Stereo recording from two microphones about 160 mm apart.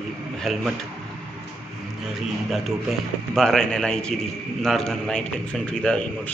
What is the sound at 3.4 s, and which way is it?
A man's voice, 5° left (ahead or behind).